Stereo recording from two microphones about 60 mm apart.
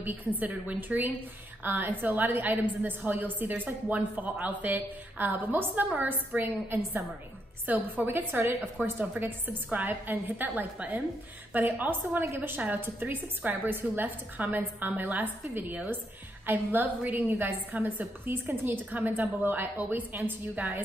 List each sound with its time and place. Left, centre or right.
0.4 s a woman's voice: right